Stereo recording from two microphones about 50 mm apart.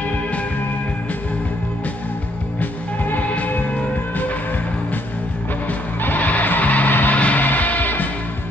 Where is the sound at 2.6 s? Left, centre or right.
Left.